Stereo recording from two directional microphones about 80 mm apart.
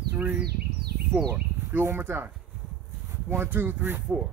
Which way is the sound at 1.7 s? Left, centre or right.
Right.